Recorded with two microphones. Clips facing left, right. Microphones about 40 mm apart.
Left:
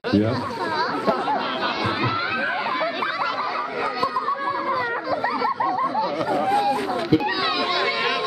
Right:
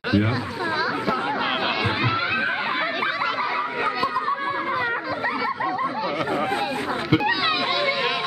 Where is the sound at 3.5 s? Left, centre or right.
Right.